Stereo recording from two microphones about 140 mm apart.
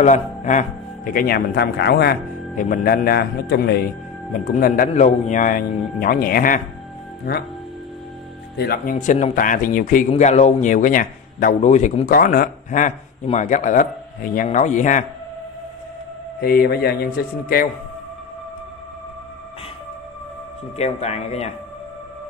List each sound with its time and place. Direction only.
0.0 s a man's voice: 60° left (ahead or behind); by 1.6 s 90° left
2.5 s a man's voice: 70° left (ahead or behind); by 3.2 s 90° left
3.8 s a man's voice: 80° left
8.6 s speech: 85° left
10.0 s a man's voice: 50° left (ahead or behind)
12.1 s a man's voice: 90° left; by 15.0 s 65° left (ahead or behind)
16.3 s a man's voice: 90° left
20.7 s speech: 50° left (ahead or behind)